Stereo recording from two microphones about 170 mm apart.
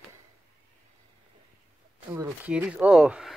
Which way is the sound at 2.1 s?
10° right (ahead or behind).